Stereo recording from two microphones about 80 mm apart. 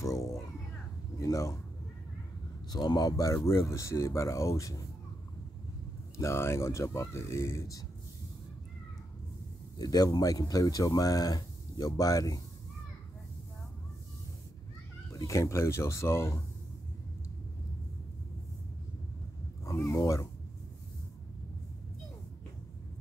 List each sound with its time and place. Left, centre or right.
0.0 s a sound: left
1.2 s speech: left
2.7 s speech: left
6.1 s a man's voice: left
9.8 s speech: left
15.1 s a man's voice: left
19.6 s a man's voice: left